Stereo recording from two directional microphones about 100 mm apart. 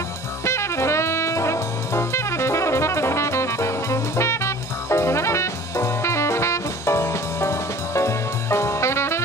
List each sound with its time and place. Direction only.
0.5 s music: 30° left (ahead or behind)
4.8 s jazz: 25° left (ahead or behind)